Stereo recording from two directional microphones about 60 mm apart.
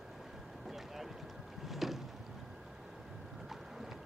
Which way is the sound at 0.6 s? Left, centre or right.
Centre.